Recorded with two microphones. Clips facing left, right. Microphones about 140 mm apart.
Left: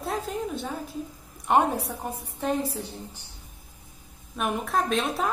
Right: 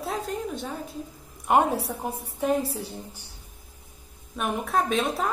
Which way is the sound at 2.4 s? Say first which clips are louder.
Right 2 dB; 10° right (ahead or behind).